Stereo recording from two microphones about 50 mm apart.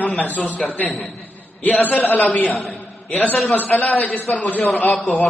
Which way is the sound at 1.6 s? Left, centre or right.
Left.